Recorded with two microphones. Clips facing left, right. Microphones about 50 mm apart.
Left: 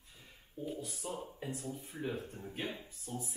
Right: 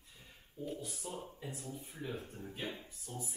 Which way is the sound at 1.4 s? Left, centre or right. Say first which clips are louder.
Left 4 dB; left.